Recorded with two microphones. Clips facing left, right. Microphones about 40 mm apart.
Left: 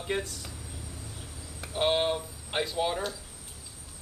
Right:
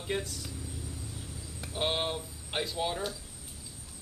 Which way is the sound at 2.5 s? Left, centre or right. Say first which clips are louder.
Left 3 dB; centre.